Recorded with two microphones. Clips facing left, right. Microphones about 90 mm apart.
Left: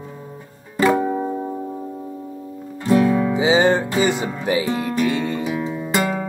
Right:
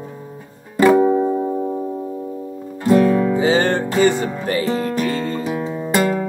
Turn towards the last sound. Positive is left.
turn(degrees=5)  # may be behind; listen again after turning